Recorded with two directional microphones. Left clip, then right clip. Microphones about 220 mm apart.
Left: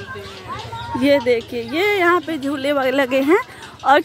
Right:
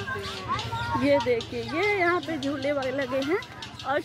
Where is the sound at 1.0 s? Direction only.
45° left (ahead or behind).